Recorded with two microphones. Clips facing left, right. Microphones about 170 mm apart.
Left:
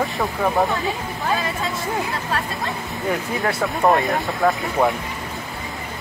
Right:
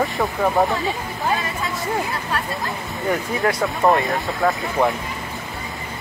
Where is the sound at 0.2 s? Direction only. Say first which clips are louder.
Right 1 dB; centre (ahead or behind).